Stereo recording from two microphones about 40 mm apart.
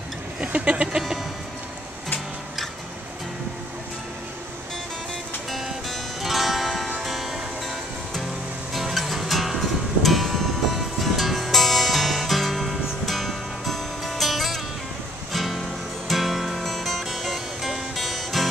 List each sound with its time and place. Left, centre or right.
0.4 s vehicle: right
5.5 s music: centre